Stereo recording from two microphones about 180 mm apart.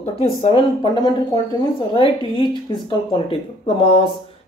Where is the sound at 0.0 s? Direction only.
35° left (ahead or behind).